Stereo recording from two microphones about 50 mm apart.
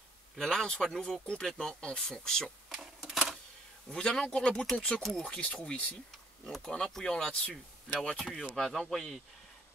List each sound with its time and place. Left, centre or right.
0.4 s speech: centre
2.7 s sewing machine: centre
3.9 s speech: centre
6.1 s a sound: centre
6.7 s speech: centre